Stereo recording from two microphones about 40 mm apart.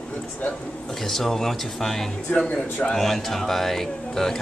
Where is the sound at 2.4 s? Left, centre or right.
Left.